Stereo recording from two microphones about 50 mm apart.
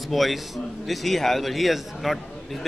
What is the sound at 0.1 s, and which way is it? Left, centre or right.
Speech, centre.